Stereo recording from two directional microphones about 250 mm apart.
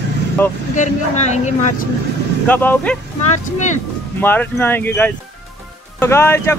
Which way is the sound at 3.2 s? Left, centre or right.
Left.